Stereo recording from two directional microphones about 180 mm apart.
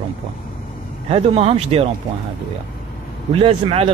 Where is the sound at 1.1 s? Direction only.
35° right (ahead or behind).